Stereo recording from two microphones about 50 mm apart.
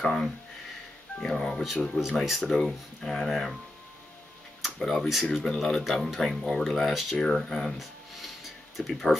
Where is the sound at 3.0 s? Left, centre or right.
Centre.